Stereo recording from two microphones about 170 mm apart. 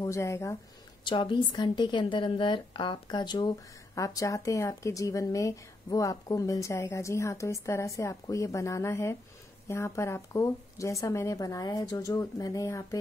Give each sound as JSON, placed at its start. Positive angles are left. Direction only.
{"t": 0.0, "sound": "speech", "side_deg": 15}
{"t": 1.0, "sound": "a woman's voice", "side_deg": 30}